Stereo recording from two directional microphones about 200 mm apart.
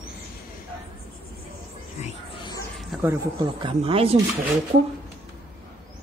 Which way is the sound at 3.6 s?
30° right (ahead or behind).